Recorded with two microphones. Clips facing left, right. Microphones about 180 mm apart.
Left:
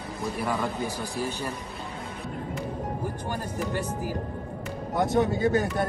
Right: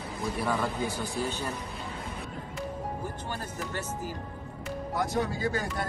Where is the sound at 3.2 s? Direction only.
10° left (ahead or behind).